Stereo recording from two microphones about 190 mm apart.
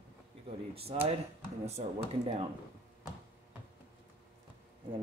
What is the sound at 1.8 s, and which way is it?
Speech, 35° right (ahead or behind).